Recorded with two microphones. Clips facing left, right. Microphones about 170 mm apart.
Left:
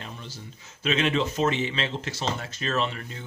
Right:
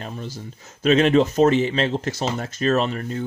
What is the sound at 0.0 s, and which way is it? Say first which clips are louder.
Speech: right 8 dB; 45° right (ahead or behind).